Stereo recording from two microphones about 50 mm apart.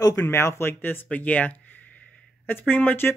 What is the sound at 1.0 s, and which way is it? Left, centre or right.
Speech, left.